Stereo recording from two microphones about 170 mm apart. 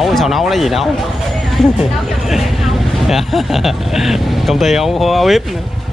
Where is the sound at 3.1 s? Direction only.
Centre (ahead or behind).